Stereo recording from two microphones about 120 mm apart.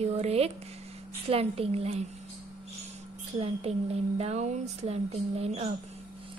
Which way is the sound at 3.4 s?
60° right (ahead or behind).